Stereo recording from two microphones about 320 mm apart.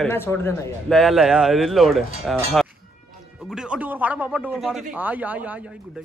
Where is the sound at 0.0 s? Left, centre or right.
Centre.